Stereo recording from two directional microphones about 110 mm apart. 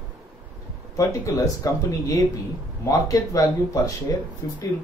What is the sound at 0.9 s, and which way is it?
A man's voice, 30° left (ahead or behind).